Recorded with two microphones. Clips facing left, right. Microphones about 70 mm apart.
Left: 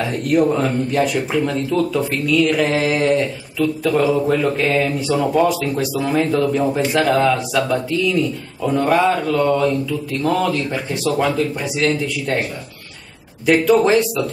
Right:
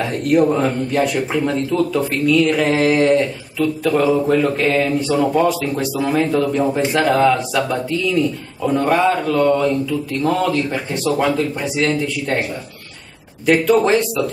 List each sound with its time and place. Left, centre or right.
0.0 s speech: centre
1.9 s speech: centre
8.6 s speech: centre
13.5 s speech: centre